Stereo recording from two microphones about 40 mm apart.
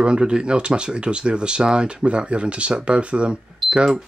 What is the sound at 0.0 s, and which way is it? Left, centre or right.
Speech, right.